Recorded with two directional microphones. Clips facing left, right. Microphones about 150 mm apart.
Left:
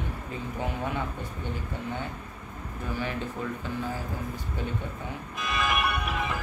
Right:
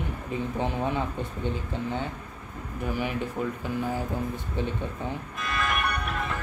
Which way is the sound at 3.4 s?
10° right (ahead or behind).